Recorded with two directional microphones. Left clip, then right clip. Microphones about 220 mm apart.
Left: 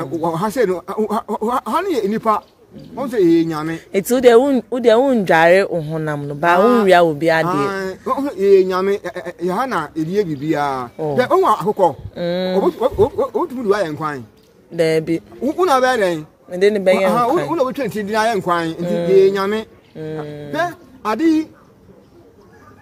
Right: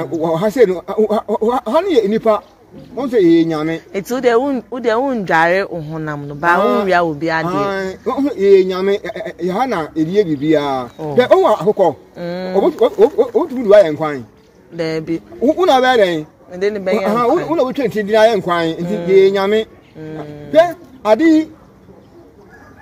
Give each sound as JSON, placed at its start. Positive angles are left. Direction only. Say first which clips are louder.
{"t": 0.0, "sound": "a man's voice", "louder": "right 4 dB", "side_deg": 15}
{"t": 3.9, "sound": "speech", "louder": "left 4 dB", "side_deg": 40}
{"t": 7.4, "sound": "music", "louder": "right 1 dB", "side_deg": 15}
{"t": 8.1, "sound": "a man's voice", "louder": "right 2 dB", "side_deg": 20}
{"t": 12.2, "sound": "speech", "louder": "left 3 dB", "side_deg": 35}
{"t": 12.6, "sound": "a man's voice", "louder": "right 7 dB", "side_deg": 20}
{"t": 14.8, "sound": "speech", "louder": "left 4 dB", "side_deg": 40}
{"t": 15.4, "sound": "a man's voice", "louder": "right 3 dB", "side_deg": 20}
{"t": 16.5, "sound": "speech", "louder": "left 3 dB", "side_deg": 40}
{"t": 17.6, "sound": "a man's voice", "louder": "right 3 dB", "side_deg": 20}
{"t": 19.0, "sound": "music", "louder": "right 2 dB", "side_deg": 15}
{"t": 20.0, "sound": "speech", "louder": "left 2 dB", "side_deg": 40}
{"t": 20.5, "sound": "speech", "louder": "right 10 dB", "side_deg": 15}